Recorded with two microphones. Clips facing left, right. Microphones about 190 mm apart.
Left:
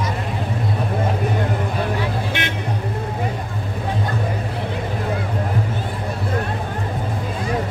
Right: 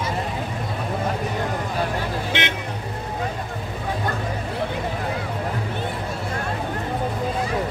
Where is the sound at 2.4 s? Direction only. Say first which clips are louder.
Even; 20° right (ahead or behind).